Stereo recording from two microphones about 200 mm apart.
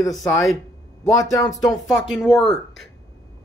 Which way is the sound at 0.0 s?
15° left (ahead or behind).